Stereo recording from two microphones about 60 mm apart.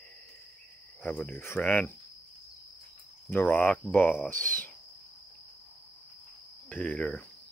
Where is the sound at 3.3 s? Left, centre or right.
Left.